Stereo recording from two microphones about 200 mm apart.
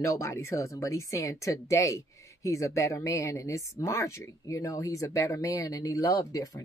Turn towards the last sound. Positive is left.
turn(degrees=15)  # may be behind; listen again after turning